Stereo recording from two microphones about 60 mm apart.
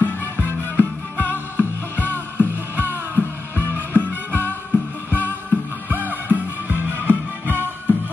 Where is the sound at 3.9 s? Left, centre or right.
Left.